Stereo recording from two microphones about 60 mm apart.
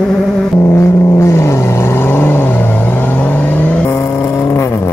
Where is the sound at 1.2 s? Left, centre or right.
Left.